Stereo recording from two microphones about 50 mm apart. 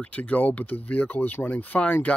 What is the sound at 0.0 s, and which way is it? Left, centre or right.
Speech, left.